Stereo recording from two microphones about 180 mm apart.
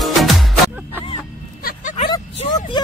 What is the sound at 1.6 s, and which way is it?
Vehicle, 45° left (ahead or behind).